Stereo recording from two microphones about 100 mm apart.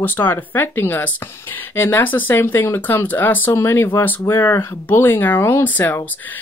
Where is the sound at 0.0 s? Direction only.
20° left (ahead or behind).